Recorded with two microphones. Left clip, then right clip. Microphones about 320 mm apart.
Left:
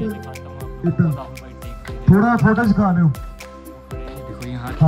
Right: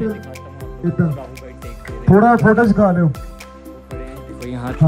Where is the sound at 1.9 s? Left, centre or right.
Centre.